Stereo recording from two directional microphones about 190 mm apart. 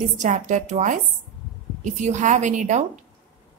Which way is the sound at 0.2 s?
40° right (ahead or behind).